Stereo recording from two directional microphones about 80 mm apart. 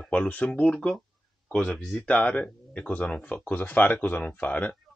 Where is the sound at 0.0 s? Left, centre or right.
Centre.